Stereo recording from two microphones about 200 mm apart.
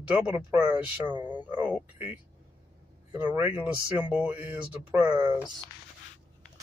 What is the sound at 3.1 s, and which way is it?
Speech, 10° right (ahead or behind).